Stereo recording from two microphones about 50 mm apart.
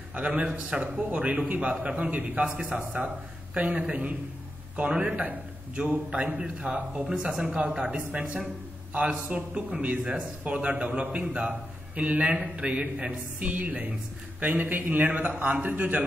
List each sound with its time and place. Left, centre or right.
0.1 s a man's voice: right